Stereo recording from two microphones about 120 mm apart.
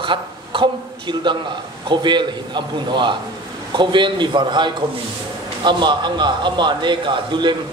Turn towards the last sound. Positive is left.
turn(degrees=-40)  # may be behind; listen again after turning